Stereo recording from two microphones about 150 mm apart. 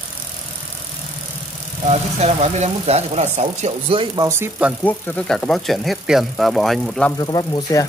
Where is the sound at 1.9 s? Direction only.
45° right (ahead or behind).